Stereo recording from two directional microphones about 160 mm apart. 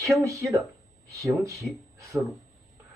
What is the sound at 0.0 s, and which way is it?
Speech, 20° right (ahead or behind).